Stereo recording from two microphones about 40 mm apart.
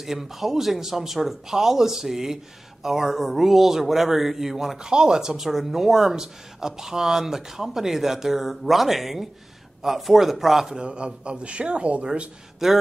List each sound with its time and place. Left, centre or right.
0.0 s a man's voice: centre
10.8 s speech: right
12.6 s a man's voice: centre